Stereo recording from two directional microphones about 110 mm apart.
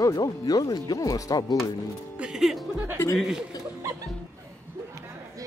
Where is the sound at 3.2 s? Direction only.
5° right (ahead or behind).